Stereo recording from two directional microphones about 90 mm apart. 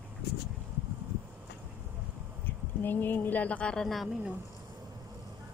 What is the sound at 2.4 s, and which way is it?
Speech, 20° left (ahead or behind).